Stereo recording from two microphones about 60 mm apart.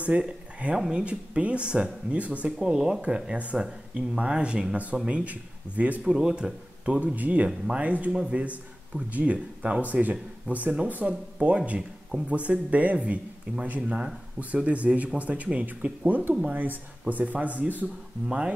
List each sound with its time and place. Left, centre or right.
0.1 s speech: right
0.7 s speech: centre
1.0 s speech: right
2.6 s speech: centre
6.0 s speech: centre
7.4 s speech: centre
7.8 s speech: right